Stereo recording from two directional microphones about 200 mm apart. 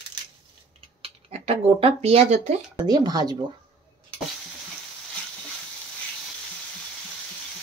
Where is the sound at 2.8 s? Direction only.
20° right (ahead or behind).